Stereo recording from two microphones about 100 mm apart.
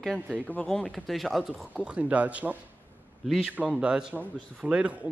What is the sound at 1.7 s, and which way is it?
A man's voice, 10° right (ahead or behind).